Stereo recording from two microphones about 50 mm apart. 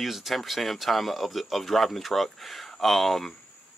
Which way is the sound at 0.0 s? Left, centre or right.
Centre.